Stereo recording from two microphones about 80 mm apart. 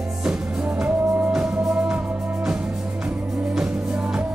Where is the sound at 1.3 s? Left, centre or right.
Centre.